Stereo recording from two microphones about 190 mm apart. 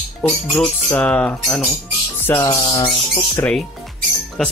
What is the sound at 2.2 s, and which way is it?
Music, 20° left (ahead or behind).